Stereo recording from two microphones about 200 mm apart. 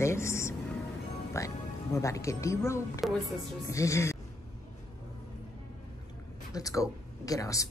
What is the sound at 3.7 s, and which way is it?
Speech, 15° left (ahead or behind).